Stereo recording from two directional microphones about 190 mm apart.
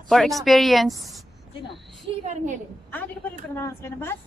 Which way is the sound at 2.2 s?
40° right (ahead or behind).